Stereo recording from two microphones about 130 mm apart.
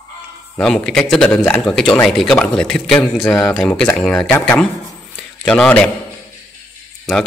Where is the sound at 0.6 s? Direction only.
5° left (ahead or behind).